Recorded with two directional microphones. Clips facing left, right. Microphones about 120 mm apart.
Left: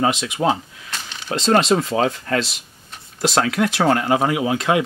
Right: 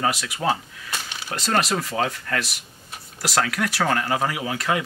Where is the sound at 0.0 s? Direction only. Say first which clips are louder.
Left 5 dB; 20° left (ahead or behind).